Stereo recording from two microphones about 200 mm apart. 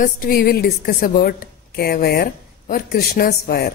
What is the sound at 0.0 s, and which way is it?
A woman's voice, 45° left (ahead or behind).